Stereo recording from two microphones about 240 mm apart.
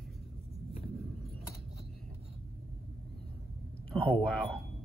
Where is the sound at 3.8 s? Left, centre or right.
Centre.